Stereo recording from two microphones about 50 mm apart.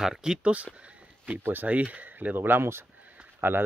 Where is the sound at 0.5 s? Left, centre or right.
Right.